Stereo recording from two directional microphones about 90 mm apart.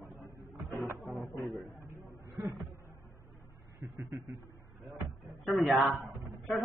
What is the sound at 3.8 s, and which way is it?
Speech, 25° right (ahead or behind).